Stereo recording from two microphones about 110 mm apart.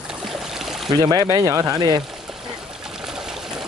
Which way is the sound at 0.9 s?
35° right (ahead or behind).